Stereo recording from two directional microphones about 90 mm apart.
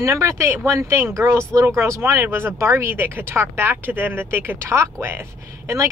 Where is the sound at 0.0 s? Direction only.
35° right (ahead or behind).